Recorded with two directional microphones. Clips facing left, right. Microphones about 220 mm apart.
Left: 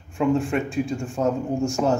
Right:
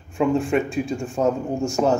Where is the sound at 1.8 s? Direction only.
40° right (ahead or behind).